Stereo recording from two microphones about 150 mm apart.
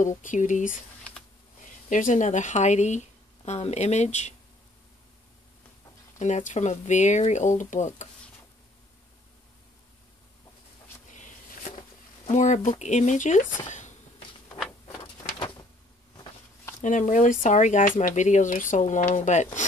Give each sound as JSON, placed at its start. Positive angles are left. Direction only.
{"t": 0.0, "sound": "speech", "side_deg": 55}
{"t": 6.1, "sound": "speech", "side_deg": 50}
{"t": 11.1, "sound": "a sound", "side_deg": 55}
{"t": 12.3, "sound": "speech", "side_deg": 55}
{"t": 13.7, "sound": "a sound", "side_deg": 55}
{"t": 16.8, "sound": "speech", "side_deg": 55}